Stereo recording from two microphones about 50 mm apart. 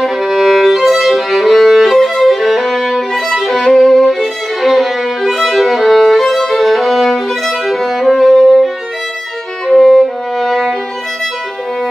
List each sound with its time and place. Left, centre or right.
0.0 s violin: centre
9.7 s music: centre